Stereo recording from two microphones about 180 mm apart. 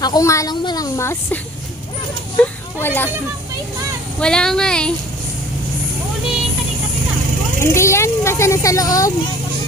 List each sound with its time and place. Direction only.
0.0 s speech: 20° left (ahead or behind)
4.2 s speech: 5° left (ahead or behind)
7.6 s speech: 15° left (ahead or behind)